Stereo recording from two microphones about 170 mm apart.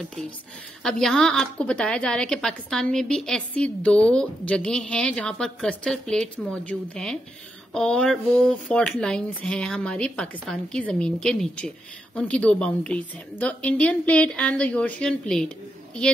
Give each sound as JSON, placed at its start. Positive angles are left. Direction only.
{"t": 0.8, "sound": "a woman's voice", "side_deg": 5}